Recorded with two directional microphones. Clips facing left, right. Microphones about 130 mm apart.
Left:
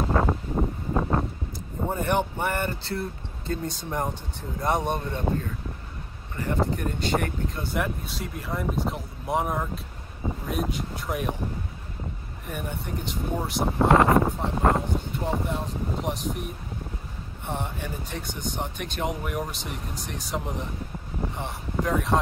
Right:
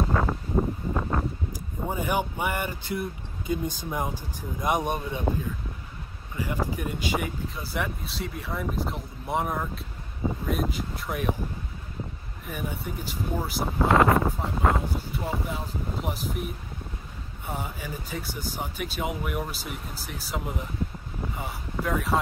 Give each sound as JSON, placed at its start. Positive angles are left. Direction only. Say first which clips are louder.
{"t": 0.0, "sound": "a sound", "louder": "left 2 dB", "side_deg": 20}
{"t": 1.9, "sound": "speech", "louder": "left 2 dB", "side_deg": -10}
{"t": 6.3, "sound": "speech", "louder": "left 3 dB", "side_deg": -10}
{"t": 12.4, "sound": "speech", "louder": "even", "side_deg": 0}
{"t": 21.8, "sound": "speech", "louder": "left 1 dB", "side_deg": 0}